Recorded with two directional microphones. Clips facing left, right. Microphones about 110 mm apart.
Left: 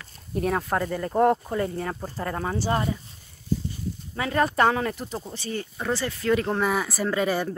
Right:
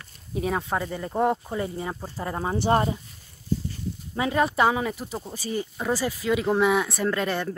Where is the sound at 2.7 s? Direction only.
35° right (ahead or behind).